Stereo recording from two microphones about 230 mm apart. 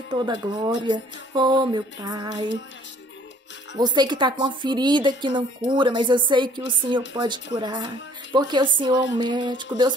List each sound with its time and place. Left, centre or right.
0.1 s a woman's voice: centre
3.7 s a woman's voice: centre